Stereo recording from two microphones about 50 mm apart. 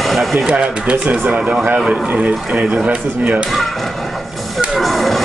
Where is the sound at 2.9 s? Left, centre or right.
Right.